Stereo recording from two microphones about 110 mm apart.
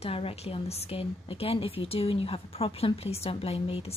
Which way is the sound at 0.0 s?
60° left (ahead or behind).